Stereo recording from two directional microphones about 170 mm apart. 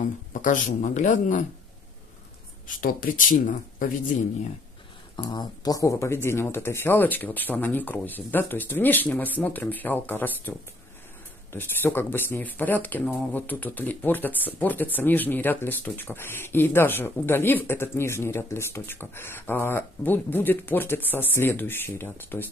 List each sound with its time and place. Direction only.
0.0 s speech: 50° left (ahead or behind)
2.8 s speech: 55° left (ahead or behind)
5.1 s speech: 25° left (ahead or behind)
11.5 s speech: 10° left (ahead or behind)